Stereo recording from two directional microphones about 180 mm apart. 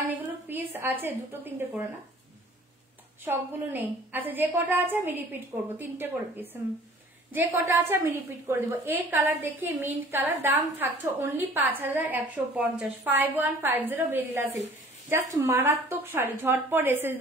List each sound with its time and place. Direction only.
0.5 s a woman's voice: 10° right (ahead or behind)
3.3 s a woman's voice: 10° right (ahead or behind)